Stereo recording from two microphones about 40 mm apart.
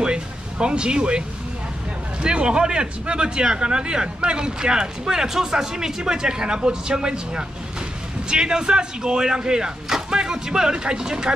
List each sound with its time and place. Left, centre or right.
0.0 s music: right
2.2 s speech: right